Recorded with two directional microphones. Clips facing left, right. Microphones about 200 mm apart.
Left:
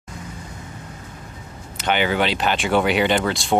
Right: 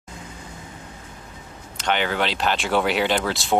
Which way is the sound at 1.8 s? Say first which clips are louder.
Left 3 dB; 5° left (ahead or behind).